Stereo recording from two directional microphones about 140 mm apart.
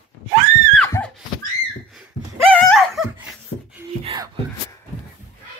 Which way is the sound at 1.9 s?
5° left (ahead or behind).